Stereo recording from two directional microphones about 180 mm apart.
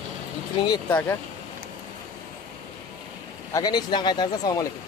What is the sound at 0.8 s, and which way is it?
Speech, 10° left (ahead or behind).